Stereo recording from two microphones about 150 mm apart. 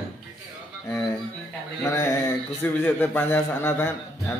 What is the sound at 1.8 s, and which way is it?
A man's voice, 20° left (ahead or behind).